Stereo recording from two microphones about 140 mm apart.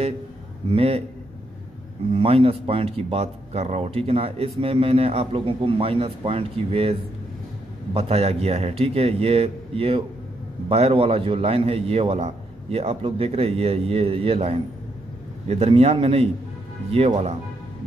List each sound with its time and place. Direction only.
0.7 s speech: 45° right (ahead or behind)
2.1 s speech: 45° right (ahead or behind)